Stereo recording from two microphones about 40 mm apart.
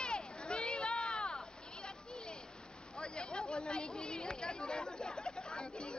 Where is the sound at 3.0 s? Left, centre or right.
Left.